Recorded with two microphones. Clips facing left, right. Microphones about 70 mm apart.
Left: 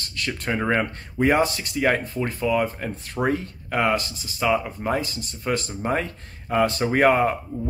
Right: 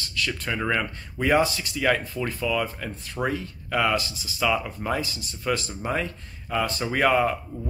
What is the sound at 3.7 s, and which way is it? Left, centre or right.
Speech, left.